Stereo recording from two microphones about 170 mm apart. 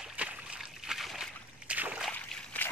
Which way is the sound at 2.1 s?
10° left (ahead or behind).